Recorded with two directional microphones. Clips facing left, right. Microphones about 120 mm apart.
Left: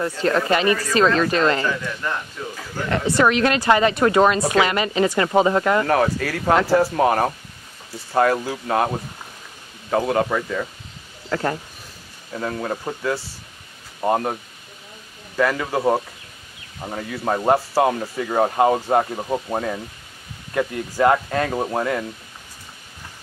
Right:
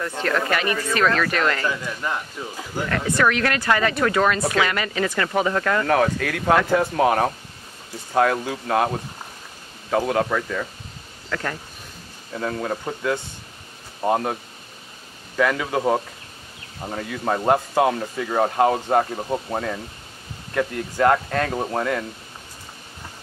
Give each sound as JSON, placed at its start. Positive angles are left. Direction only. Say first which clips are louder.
{"t": 0.2, "sound": "speech", "louder": "left 4 dB", "side_deg": 25}
{"t": 1.7, "sound": "a man's voice", "louder": "left 1 dB", "side_deg": -15}
{"t": 2.9, "sound": "speech", "louder": "left 3 dB", "side_deg": 25}
{"t": 5.9, "sound": "speech", "louder": "left 1 dB", "side_deg": 0}
{"t": 11.2, "sound": "speech", "louder": "left 5 dB", "side_deg": 30}
{"t": 12.3, "sound": "speech", "louder": "even", "side_deg": 0}
{"t": 15.3, "sound": "speech", "louder": "left 1 dB", "side_deg": 0}